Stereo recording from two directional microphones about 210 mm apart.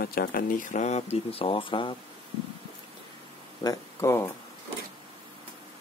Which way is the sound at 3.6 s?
15° left (ahead or behind).